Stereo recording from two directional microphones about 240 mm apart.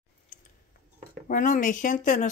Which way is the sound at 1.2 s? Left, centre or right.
Left.